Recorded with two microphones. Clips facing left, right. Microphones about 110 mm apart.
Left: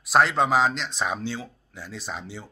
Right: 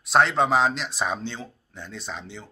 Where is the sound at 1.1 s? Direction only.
5° left (ahead or behind).